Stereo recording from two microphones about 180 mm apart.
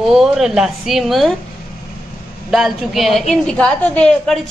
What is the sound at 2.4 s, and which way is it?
A woman's voice, centre (ahead or behind).